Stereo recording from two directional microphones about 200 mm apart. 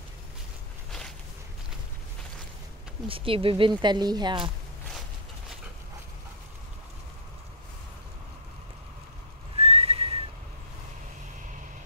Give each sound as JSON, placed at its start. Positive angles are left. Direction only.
{"t": 3.1, "sound": "speech", "side_deg": -25}
{"t": 9.6, "sound": "whistling", "side_deg": -30}